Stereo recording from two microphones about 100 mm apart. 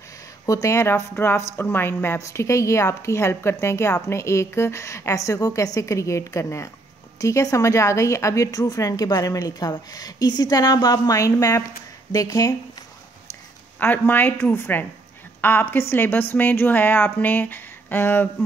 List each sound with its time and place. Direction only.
0.5 s a woman's voice: 30° left (ahead or behind)
13.7 s a woman's voice: 20° left (ahead or behind)